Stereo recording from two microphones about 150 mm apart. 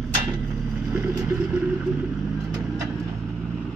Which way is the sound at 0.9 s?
20° right (ahead or behind).